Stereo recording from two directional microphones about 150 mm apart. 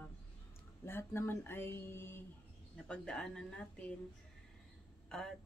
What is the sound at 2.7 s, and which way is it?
Speech, 5° left (ahead or behind).